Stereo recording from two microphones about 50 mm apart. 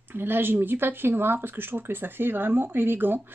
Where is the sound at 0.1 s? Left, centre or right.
Right.